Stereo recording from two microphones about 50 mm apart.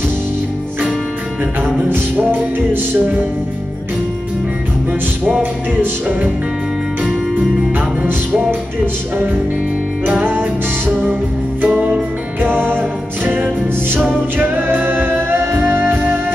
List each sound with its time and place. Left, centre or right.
1.8 s music: right
5.4 s music: right
10.0 s music: right
11.6 s music: right